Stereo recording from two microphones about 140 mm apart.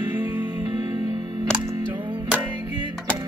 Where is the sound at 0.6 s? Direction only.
30° right (ahead or behind).